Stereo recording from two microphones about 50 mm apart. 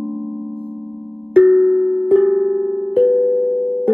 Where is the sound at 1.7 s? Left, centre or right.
Right.